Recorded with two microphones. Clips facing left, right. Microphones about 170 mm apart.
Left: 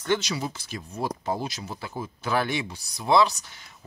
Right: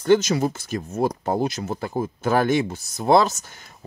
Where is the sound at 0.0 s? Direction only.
40° right (ahead or behind).